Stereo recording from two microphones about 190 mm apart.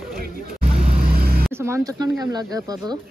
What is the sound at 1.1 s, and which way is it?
Vehicle, 55° right (ahead or behind).